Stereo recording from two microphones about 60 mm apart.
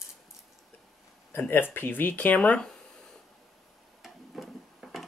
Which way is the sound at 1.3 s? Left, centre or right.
Left.